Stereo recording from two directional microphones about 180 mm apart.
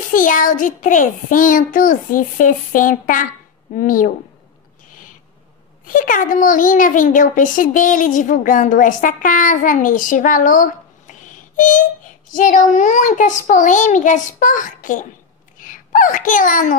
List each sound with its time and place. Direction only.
0.1 s a child's voice: 45° left (ahead or behind)
5.9 s a child's voice: 50° left (ahead or behind)